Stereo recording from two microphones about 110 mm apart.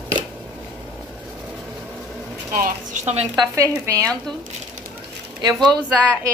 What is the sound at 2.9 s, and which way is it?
Speech, 90° right.